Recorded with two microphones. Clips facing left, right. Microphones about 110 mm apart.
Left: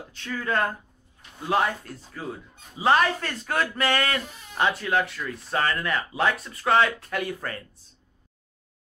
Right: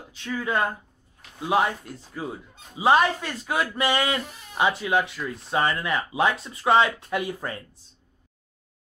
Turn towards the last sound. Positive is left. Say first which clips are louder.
# right 2 dB
turn(degrees=-20)  # may be behind; listen again after turning